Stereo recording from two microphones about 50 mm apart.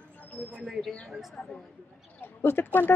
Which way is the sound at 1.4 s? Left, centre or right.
Left.